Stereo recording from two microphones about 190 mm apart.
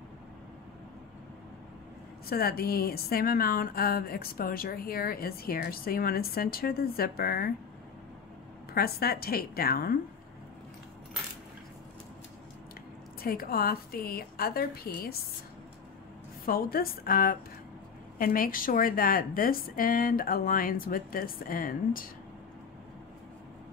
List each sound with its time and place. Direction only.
2.2 s speech: 50° left (ahead or behind)
8.7 s speech: 55° left (ahead or behind)
13.2 s speech: 50° left (ahead or behind)
16.4 s speech: 50° left (ahead or behind)